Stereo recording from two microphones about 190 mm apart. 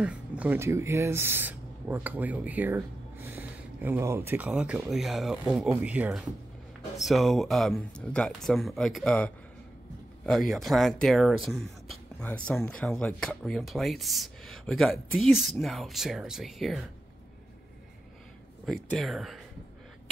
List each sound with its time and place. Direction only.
0.0 s speech: 5° right (ahead or behind)
18.7 s speech: centre (ahead or behind)